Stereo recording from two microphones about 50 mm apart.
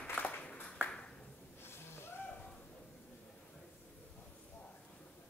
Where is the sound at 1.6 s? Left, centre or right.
Left.